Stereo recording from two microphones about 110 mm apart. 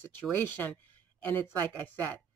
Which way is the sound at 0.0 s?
15° left (ahead or behind).